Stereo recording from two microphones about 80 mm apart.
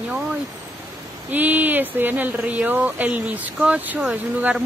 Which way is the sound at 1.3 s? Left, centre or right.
Right.